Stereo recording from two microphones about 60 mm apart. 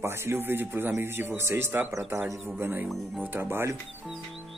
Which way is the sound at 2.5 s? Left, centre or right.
Right.